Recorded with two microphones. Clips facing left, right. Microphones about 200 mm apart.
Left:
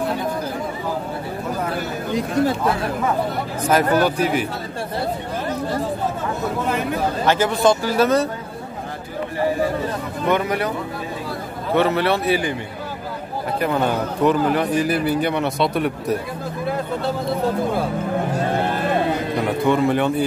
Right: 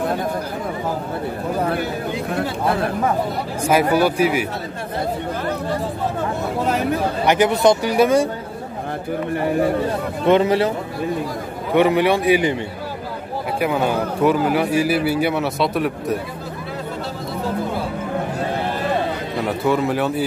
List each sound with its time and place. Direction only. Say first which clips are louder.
3.6 s a man's voice: right 1 dB; 10° right (ahead or behind)
7.2 s a man's voice: right 2 dB; 20° right (ahead or behind)
10.2 s speech: right 5 dB; 25° right (ahead or behind)
11.7 s a man's voice: right 3 dB; 15° right (ahead or behind)
13.6 s a man's voice: right 1 dB; 10° right (ahead or behind)
19.6 s a man's voice: left 1 dB; 5° right (ahead or behind)